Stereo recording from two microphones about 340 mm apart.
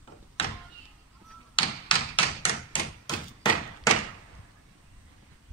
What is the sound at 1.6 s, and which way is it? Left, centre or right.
Thump, centre.